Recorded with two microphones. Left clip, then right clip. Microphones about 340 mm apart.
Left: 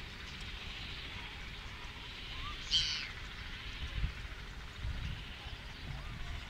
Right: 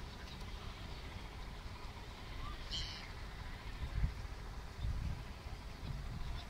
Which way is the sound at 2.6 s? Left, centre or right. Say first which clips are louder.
Left 13 dB; right.